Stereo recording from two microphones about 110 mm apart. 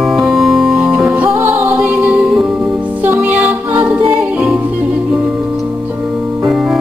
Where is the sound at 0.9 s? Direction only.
15° right (ahead or behind).